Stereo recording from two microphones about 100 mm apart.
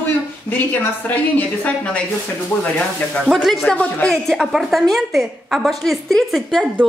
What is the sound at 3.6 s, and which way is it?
Speech, 15° left (ahead or behind).